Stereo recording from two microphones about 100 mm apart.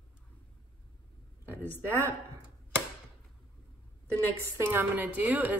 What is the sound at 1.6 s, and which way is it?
Speech, 20° left (ahead or behind).